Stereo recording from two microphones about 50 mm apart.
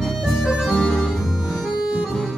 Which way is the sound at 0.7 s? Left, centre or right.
Left.